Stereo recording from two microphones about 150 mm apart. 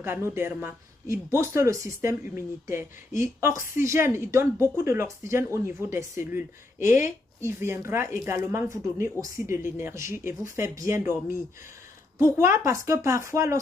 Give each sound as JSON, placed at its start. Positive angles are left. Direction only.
{"t": 0.0, "sound": "a woman's voice", "side_deg": -15}